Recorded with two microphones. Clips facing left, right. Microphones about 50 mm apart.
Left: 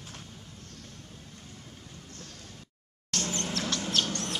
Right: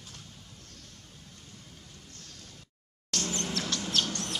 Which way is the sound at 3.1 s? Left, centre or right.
Centre.